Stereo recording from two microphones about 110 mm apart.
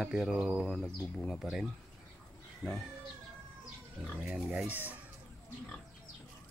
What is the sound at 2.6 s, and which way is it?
Speech, 30° left (ahead or behind).